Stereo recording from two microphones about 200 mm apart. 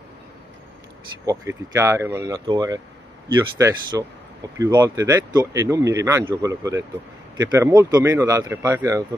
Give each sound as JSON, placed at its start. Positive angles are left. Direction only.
{"t": 1.2, "sound": "speech", "side_deg": -15}